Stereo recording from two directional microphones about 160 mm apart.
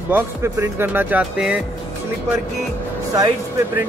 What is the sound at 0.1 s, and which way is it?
Speech, 15° right (ahead or behind).